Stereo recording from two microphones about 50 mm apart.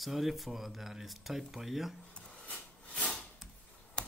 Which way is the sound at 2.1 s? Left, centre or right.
Left.